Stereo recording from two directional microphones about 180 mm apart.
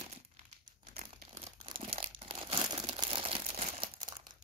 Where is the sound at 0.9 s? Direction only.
35° right (ahead or behind).